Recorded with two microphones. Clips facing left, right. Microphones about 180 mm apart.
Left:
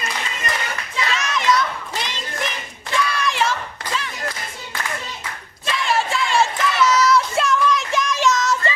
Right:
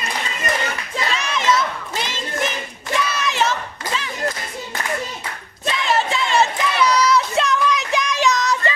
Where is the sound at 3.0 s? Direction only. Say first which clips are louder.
Left 1 dB; 25° right (ahead or behind).